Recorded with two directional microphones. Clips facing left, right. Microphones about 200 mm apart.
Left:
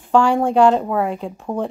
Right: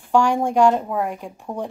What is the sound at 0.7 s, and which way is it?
Speech, 85° left.